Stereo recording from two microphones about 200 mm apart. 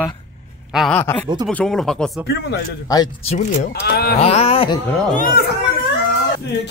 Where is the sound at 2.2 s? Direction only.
60° left (ahead or behind).